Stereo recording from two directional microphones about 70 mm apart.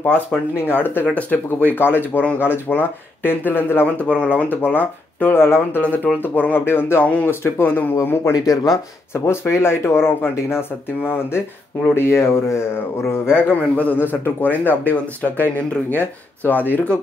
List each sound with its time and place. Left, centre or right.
0.1 s speech: left
7.2 s speech: left
8.2 s speech: left
9.1 s speech: left